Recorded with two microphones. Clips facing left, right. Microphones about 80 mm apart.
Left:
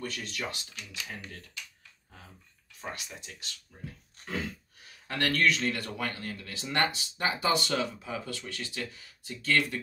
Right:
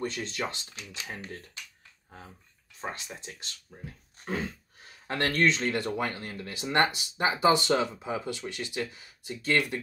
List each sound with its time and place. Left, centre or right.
0.0 s speech: right
2.8 s speech: right